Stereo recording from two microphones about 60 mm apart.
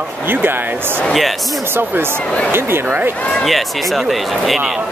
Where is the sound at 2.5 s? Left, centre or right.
Right.